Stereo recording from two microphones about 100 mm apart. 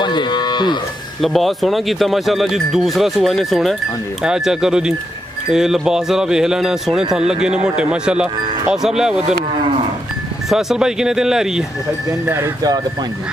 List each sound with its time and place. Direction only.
0.0 s cattle: 50° left (ahead or behind)
1.2 s speech: centre (ahead or behind)
10.5 s speech: 5° right (ahead or behind)